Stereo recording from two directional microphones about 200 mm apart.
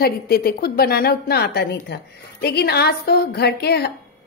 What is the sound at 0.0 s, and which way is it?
A woman's voice, 50° left (ahead or behind).